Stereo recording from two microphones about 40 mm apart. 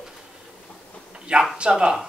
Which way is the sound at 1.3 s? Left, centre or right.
Right.